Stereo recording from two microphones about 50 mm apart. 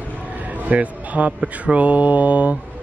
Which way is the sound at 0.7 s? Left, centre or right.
Right.